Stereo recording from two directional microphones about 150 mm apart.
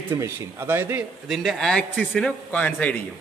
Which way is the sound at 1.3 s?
Centre (ahead or behind).